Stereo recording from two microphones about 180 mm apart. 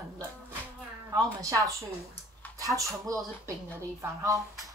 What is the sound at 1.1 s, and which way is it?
Speech, 20° right (ahead or behind).